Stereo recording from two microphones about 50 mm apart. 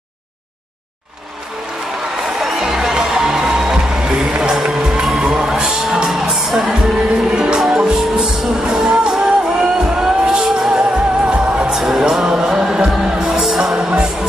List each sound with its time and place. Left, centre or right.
2.4 s music: centre
7.3 s music: centre
10.8 s music: centre
11.7 s music: centre